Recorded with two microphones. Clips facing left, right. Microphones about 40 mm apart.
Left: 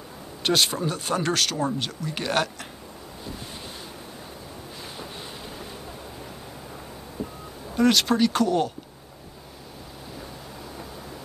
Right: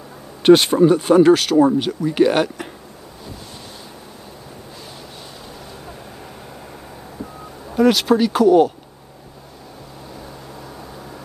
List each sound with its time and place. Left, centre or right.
0.4 s speech: right
0.9 s speech: centre
7.7 s speech: centre